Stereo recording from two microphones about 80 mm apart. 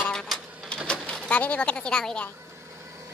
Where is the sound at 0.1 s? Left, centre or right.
Centre.